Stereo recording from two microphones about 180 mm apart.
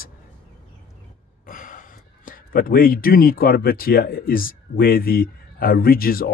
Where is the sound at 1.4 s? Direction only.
50° left (ahead or behind).